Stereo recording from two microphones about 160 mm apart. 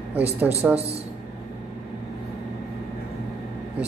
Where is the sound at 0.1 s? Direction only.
15° left (ahead or behind).